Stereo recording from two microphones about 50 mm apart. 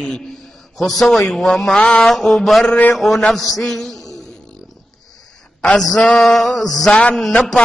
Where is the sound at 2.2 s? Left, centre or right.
Centre.